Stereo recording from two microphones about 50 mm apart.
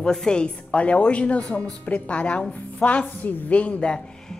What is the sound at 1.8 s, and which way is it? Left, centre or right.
Speech, left.